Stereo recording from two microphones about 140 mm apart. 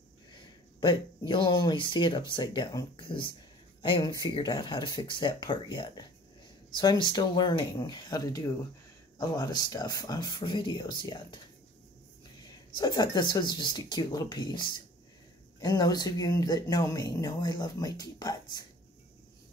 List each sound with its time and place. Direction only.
0.7 s speech: 35° left (ahead or behind)
12.4 s speech: 30° left (ahead or behind)